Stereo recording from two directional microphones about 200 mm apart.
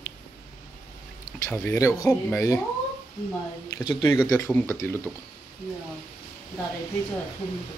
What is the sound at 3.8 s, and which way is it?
Speech, 25° left (ahead or behind).